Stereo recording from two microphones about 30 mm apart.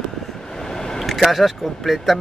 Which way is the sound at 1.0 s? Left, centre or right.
Centre.